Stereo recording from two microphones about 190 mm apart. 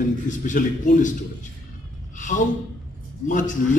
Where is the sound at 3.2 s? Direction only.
40° left (ahead or behind).